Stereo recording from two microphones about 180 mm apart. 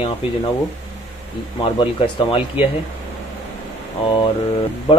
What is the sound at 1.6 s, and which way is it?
Speech, 30° left (ahead or behind).